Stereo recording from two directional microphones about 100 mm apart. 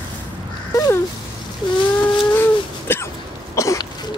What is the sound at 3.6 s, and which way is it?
Throat clearing, 30° left (ahead or behind).